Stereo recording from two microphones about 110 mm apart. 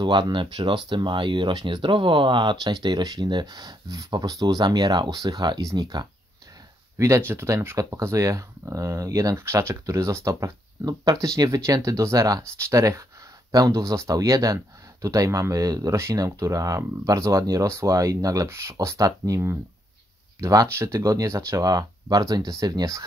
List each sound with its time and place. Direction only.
0.0 s speech: 45° right (ahead or behind)
7.0 s speech: 25° right (ahead or behind)